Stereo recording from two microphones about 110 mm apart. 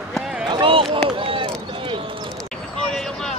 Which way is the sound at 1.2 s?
55° right (ahead or behind).